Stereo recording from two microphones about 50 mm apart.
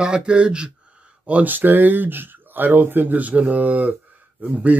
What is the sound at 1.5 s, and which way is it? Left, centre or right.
A man's voice, right.